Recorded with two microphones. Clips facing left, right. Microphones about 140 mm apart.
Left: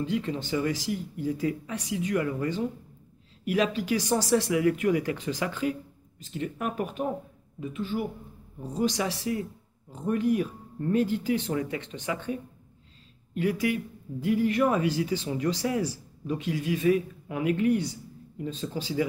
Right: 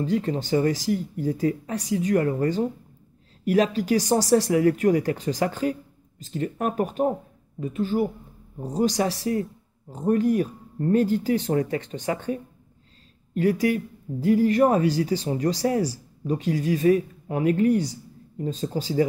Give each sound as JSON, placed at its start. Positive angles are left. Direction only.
{"t": 0.0, "sound": "speech", "side_deg": -40}